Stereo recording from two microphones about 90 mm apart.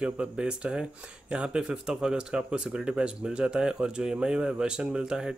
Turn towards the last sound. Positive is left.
turn(degrees=-10)  # may be behind; listen again after turning